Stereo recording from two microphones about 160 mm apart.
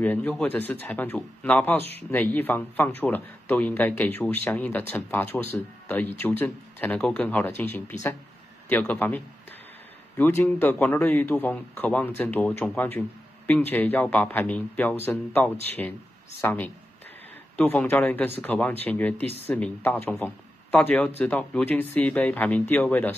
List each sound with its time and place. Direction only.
0.0 s speech: 10° left (ahead or behind)